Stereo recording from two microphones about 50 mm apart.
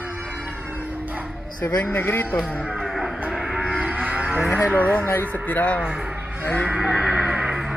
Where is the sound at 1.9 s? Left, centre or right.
Left.